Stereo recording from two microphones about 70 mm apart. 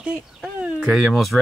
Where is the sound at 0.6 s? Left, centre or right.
Centre.